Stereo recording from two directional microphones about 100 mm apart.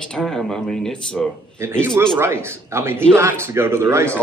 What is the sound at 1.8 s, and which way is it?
A man's voice, 25° right (ahead or behind).